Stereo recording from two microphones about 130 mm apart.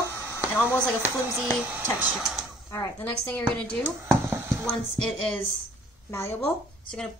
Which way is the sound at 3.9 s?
15° right (ahead or behind).